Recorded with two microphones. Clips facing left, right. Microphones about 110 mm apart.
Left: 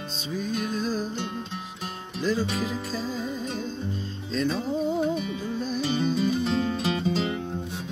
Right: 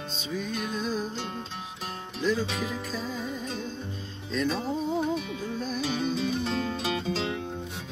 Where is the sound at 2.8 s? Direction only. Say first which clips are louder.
Left 3 dB; 30° left (ahead or behind).